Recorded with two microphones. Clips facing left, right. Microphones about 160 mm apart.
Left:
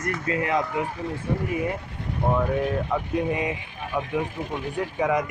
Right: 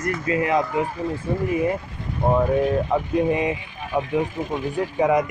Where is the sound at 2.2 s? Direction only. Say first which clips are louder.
Right 5 dB; 30° right (ahead or behind).